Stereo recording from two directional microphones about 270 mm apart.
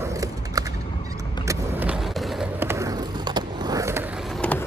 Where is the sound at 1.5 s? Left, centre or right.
Centre.